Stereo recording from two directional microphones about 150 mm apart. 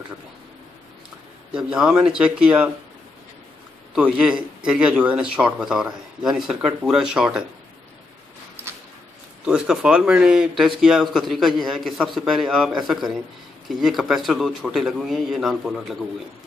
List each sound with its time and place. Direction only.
1.6 s speech: 5° right (ahead or behind)
3.9 s speech: 5° right (ahead or behind)
9.4 s speech: 5° right (ahead or behind)